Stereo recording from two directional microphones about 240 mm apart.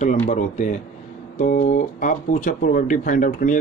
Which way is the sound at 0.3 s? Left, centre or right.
Left.